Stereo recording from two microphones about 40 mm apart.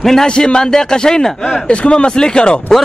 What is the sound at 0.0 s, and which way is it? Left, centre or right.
Speech, centre.